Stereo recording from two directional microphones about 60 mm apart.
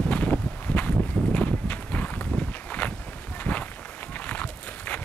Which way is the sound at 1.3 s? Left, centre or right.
Left.